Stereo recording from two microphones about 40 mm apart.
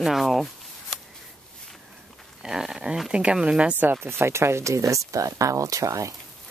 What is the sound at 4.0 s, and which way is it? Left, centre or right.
Speech, right.